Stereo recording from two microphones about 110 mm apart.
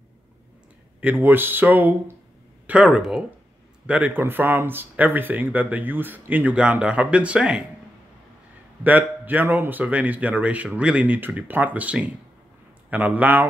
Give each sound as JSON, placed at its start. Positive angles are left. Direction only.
{"t": 1.0, "sound": "speech", "side_deg": -15}
{"t": 8.8, "sound": "speech", "side_deg": -15}